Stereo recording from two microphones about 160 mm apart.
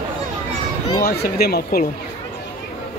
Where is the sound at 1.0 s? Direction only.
80° left.